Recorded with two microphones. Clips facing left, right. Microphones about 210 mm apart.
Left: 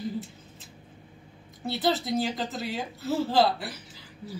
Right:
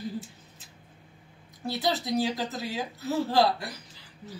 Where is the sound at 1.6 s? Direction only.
Centre (ahead or behind).